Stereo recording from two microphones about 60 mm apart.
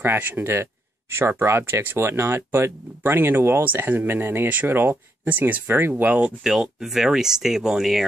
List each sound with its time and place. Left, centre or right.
0.0 s speech: right
6.0 s speech: right
6.4 s speech: centre